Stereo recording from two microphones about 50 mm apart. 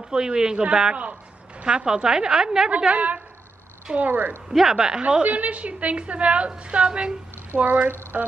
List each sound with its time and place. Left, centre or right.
0.1 s a woman's voice: centre
2.9 s a woman's voice: right
4.5 s a woman's voice: centre
5.0 s a woman's voice: right
7.6 s speech: right